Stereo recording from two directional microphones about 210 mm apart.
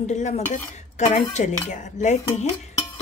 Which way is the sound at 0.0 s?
35° left (ahead or behind).